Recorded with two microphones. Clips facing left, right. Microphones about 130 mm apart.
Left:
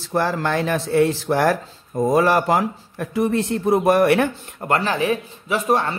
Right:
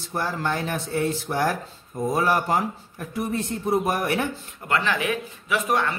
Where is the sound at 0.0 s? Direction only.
90° left.